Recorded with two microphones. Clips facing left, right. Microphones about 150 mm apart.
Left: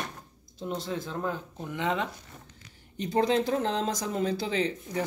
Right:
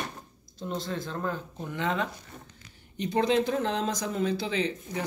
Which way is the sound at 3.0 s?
35° left (ahead or behind).